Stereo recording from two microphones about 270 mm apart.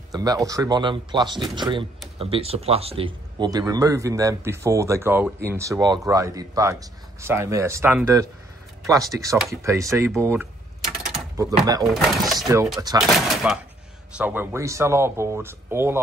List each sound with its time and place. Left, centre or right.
0.1 s a man's voice: centre
11.8 s speech: centre
12.9 s a man's voice: centre
13.3 s a sound: centre
14.1 s a man's voice: centre